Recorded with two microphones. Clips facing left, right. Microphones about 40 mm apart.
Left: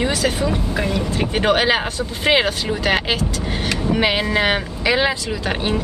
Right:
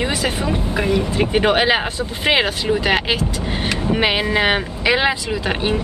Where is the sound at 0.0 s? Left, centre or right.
Right.